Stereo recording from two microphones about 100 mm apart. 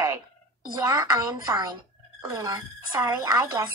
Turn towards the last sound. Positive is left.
turn(degrees=-35)  # may be behind; listen again after turning